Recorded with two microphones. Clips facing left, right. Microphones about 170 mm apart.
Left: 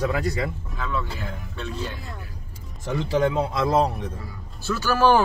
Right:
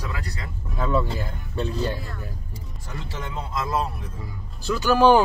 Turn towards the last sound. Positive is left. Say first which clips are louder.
# right 2 dB
turn(degrees=-15)  # may be behind; listen again after turning